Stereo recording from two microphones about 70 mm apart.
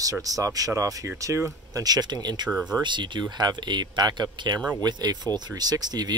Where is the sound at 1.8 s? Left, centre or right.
Right.